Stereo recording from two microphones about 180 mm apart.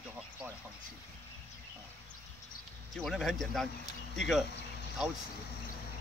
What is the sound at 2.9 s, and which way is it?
Speech, centre (ahead or behind).